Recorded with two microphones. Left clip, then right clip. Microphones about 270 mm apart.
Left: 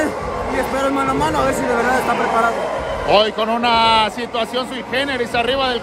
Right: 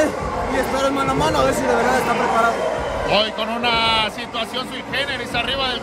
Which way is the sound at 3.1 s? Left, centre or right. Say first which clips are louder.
Left 6 dB; left.